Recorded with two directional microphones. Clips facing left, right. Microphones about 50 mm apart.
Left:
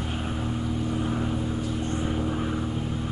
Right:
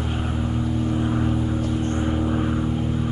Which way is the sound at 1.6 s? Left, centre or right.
Right.